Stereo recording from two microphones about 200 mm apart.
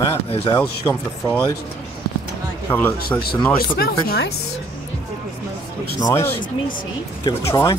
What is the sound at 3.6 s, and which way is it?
Speech, 50° left (ahead or behind).